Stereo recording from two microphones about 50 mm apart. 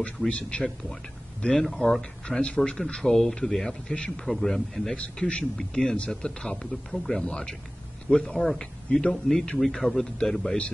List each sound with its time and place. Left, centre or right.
0.2 s speech: centre
4.3 s speech: centre
4.9 s speech: left